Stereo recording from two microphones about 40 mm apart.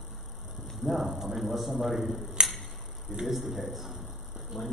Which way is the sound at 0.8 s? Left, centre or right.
Centre.